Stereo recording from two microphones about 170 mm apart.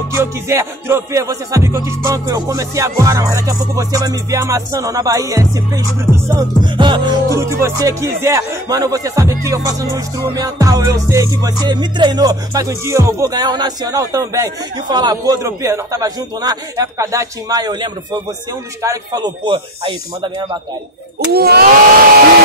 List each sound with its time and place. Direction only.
0.1 s music: 15° right (ahead or behind)
21.3 s hair dryer: 65° right (ahead or behind)